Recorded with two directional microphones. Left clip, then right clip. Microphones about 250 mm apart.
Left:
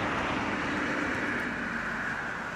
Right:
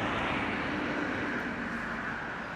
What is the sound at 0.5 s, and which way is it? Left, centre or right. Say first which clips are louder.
Vehicle: left 2 dB; left.